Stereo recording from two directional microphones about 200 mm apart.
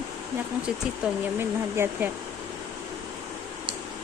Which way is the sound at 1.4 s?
10° right (ahead or behind).